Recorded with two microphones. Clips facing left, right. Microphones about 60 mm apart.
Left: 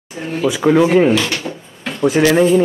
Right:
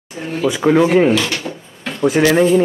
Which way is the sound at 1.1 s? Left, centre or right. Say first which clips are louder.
Left 1 dB; left.